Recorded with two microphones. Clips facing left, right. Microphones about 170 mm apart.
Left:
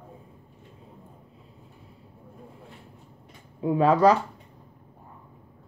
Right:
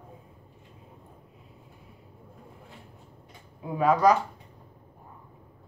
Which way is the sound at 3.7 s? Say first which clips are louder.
Left 2 dB; 30° left (ahead or behind).